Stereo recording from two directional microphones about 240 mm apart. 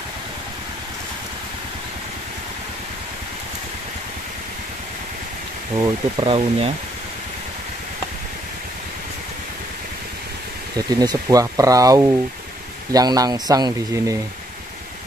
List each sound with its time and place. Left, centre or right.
5.8 s speech: right
10.9 s speech: centre